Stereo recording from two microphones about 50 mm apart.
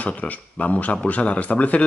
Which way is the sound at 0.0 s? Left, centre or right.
Left.